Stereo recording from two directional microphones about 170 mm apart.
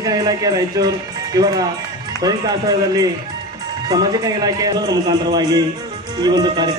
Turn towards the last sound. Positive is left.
turn(degrees=-25)  # may be behind; listen again after turning